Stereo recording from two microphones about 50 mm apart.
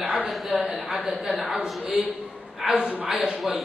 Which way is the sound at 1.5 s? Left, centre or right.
Centre.